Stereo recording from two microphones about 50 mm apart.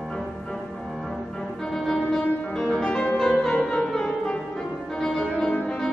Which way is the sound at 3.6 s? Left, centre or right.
Centre.